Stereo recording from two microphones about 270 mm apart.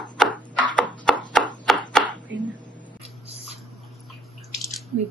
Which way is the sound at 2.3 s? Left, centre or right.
Centre.